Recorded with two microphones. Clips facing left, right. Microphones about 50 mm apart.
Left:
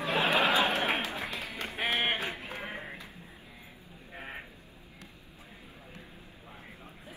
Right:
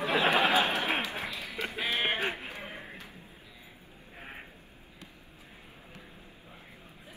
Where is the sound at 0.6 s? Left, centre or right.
Left.